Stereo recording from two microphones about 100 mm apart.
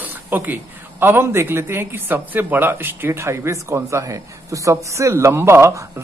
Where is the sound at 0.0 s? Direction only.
20° right (ahead or behind).